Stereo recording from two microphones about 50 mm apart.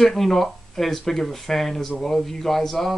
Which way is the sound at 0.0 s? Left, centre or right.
Centre.